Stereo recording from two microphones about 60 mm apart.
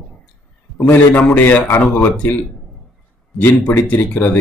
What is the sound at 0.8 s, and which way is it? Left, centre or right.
Speech, left.